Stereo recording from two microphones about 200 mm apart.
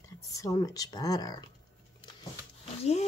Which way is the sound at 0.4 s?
15° left (ahead or behind).